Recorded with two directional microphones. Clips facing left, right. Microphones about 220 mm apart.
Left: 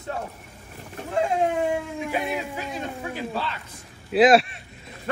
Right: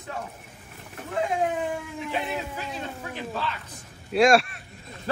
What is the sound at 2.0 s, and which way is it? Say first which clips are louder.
A man's voice: even; 15° left (ahead or behind).